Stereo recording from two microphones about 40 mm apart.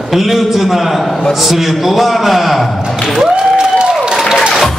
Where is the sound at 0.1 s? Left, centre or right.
Centre.